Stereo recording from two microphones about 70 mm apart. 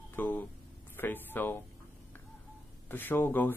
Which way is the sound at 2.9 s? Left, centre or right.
Left.